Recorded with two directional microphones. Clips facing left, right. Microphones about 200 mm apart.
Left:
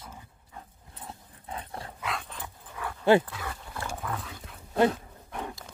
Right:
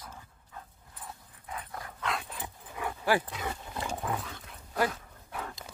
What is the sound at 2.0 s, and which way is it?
Dog, centre (ahead or behind).